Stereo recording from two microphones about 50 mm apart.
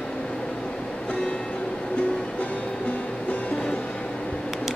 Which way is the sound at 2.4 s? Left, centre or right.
Left.